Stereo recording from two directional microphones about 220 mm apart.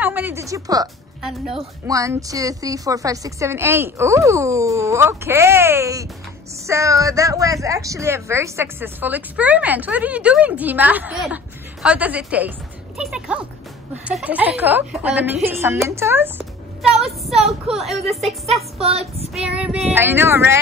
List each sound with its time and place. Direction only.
0.0 s music: 10° right (ahead or behind)
1.5 s a woman's voice: 15° right (ahead or behind)
18.5 s a sound: 25° right (ahead or behind)
19.4 s a woman's voice: 5° right (ahead or behind)